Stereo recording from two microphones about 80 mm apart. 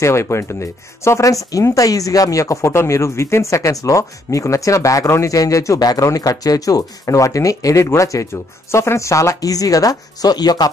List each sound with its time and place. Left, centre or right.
0.0 s speech: left